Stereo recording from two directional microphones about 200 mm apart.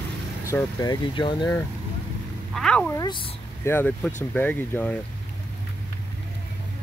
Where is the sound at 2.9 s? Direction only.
20° left (ahead or behind).